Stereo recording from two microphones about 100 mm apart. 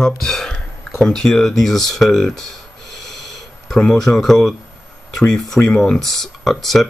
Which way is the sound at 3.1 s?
Centre (ahead or behind).